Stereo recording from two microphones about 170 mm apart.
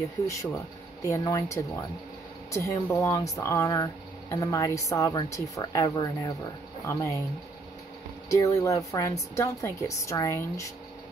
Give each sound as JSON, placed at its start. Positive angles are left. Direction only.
{"t": 1.0, "sound": "speech", "side_deg": 20}
{"t": 8.3, "sound": "speech", "side_deg": 20}